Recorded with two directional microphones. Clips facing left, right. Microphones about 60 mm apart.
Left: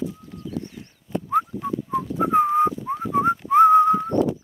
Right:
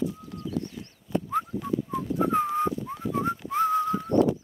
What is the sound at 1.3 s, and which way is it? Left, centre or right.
Whistling, left.